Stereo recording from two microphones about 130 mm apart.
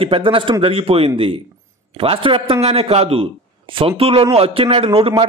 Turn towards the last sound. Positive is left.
turn(degrees=-45)  # may be behind; listen again after turning